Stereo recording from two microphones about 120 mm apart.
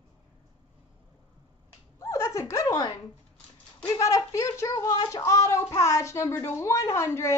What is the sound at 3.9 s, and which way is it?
Speech, 30° left (ahead or behind).